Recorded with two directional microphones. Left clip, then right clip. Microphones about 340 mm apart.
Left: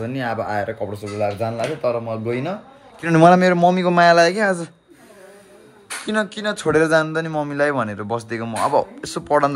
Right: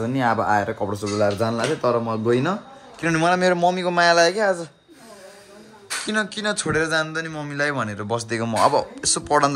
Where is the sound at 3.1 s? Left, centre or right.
Centre.